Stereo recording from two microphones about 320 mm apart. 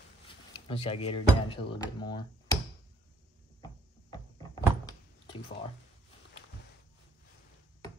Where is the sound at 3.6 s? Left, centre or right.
Centre.